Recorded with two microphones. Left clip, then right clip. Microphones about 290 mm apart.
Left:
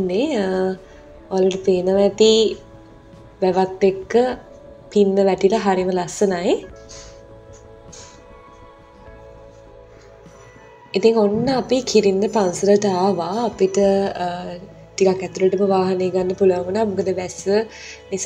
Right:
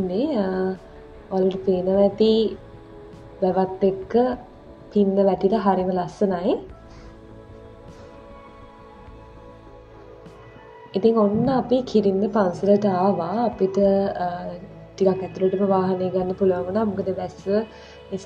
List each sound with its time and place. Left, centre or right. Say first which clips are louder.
0.1 s speech: left 4 dB; centre
10.9 s speech: left 3 dB; centre
14.1 s mantra: left 2 dB; left
14.5 s speech: left 4 dB; centre